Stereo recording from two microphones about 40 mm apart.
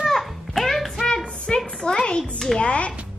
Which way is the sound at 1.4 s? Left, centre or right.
Centre.